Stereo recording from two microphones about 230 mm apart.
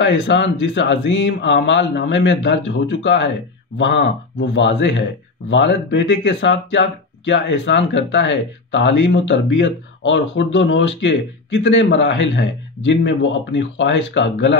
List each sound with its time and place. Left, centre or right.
0.0 s speech: left